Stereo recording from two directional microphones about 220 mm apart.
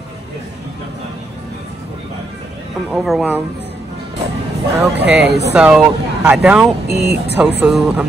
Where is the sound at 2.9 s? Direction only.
Centre (ahead or behind).